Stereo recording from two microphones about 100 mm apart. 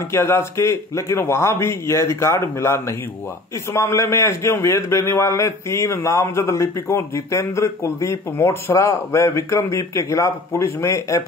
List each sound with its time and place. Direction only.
0.1 s a man's voice: 25° left (ahead or behind)